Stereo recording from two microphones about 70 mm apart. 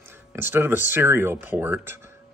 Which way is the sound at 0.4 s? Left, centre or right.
Right.